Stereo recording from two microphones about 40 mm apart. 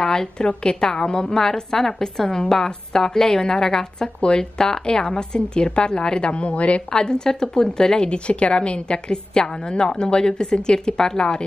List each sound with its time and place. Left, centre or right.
0.0 s a woman's voice: centre; by 6.8 s left
6.9 s a woman's voice: centre